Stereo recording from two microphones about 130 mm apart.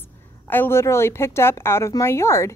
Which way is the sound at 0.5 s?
15° left (ahead or behind).